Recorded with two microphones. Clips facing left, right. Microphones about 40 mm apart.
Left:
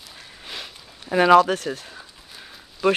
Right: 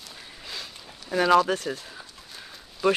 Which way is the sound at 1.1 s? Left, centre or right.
Left.